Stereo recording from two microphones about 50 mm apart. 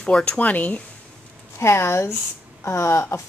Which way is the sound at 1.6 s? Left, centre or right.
Left.